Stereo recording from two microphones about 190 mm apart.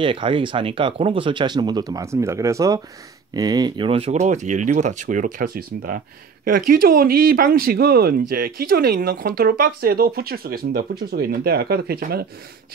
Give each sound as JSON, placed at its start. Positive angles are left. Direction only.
{"t": 0.0, "sound": "speech", "side_deg": -25}